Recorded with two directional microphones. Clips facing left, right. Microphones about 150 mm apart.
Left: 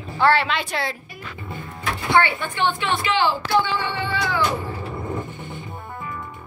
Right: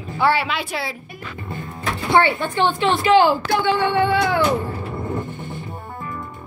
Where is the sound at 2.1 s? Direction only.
35° right (ahead or behind); by 4.5 s 55° right (ahead or behind).